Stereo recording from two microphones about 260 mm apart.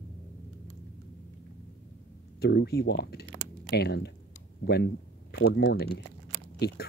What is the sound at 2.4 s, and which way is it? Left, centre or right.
Speech, left.